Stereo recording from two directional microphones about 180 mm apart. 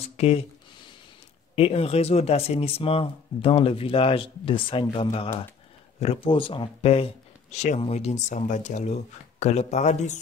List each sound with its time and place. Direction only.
0.0 s speech: 35° left (ahead or behind)
1.5 s speech: 35° left (ahead or behind)